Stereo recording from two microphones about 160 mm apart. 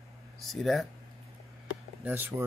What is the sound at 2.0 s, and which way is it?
Speech, 10° right (ahead or behind).